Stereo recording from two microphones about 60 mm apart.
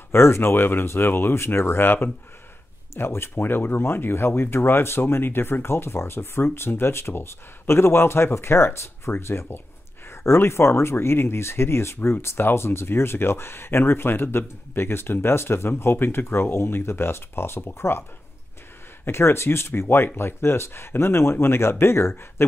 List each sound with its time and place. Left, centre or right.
0.1 s speech: left
19.0 s speech: left